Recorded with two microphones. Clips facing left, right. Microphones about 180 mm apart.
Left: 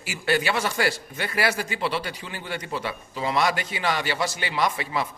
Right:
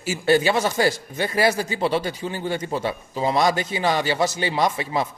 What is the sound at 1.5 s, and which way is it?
Speech, 40° right (ahead or behind).